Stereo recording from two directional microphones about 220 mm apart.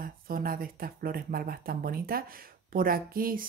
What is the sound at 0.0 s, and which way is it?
Speech, 40° right (ahead or behind).